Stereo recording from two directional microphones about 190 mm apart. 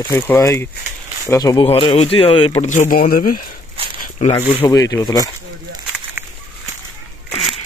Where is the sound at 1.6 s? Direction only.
30° left (ahead or behind); by 3.4 s 50° left (ahead or behind).